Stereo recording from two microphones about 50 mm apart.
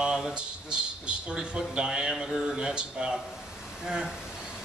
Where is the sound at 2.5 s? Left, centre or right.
Centre.